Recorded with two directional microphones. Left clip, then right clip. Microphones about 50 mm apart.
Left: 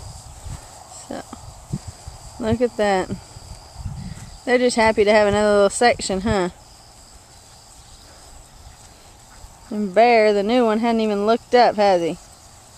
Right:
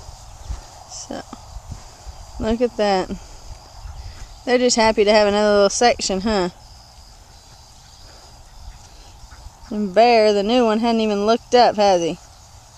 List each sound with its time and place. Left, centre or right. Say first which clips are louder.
0.9 s whispering: right 1 dB; right
2.3 s speech: even; right
4.5 s speech: right 1 dB; right
9.7 s speech: right 1 dB; right